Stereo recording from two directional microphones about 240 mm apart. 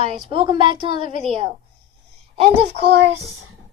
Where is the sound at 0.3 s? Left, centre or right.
Right.